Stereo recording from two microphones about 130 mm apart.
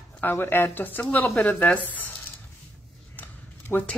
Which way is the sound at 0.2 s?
15° left (ahead or behind).